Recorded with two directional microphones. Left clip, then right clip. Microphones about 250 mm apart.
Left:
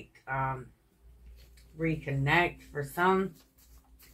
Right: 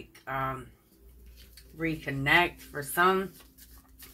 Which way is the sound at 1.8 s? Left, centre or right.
Right.